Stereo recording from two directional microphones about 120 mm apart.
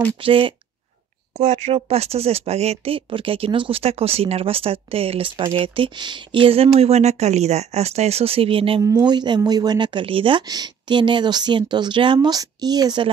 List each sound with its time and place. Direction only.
0.2 s speech: 45° right (ahead or behind)
1.4 s speech: 60° right (ahead or behind)
8.8 s speech: 30° right (ahead or behind)
10.4 s speech: 35° right (ahead or behind)